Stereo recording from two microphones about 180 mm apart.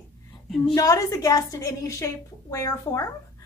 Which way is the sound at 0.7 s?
20° left (ahead or behind).